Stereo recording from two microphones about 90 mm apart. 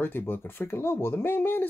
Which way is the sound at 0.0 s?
25° left (ahead or behind).